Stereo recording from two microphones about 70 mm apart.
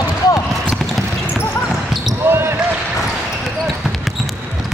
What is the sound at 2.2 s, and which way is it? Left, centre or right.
Basketball bounce, right.